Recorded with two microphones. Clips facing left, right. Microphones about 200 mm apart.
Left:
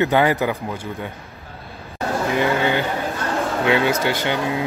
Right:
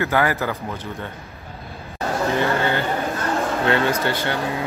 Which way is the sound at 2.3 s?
15° left (ahead or behind).